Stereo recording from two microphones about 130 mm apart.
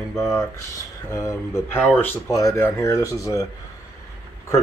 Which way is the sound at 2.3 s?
25° left (ahead or behind).